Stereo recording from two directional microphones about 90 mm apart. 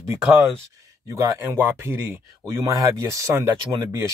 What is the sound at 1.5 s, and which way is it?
Speech, 25° right (ahead or behind).